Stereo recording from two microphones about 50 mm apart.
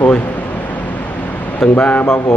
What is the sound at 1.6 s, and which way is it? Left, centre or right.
Speech, left.